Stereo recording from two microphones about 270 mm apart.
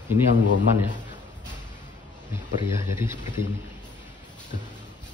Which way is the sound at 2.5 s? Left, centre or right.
Centre.